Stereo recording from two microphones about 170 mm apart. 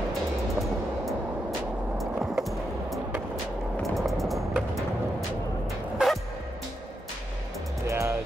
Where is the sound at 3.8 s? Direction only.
Centre (ahead or behind).